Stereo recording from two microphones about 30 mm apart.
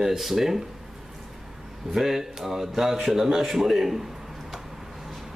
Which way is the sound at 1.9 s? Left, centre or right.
Centre.